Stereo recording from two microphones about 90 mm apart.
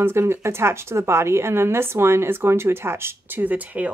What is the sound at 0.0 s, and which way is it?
A woman's voice, 30° right (ahead or behind).